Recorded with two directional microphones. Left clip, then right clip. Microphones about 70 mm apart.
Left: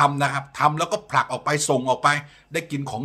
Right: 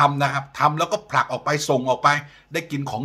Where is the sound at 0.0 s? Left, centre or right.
Centre.